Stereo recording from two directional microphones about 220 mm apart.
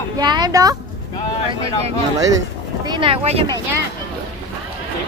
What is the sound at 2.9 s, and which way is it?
Speech, 25° right (ahead or behind).